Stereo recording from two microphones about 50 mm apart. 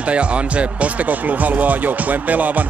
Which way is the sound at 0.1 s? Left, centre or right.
Right.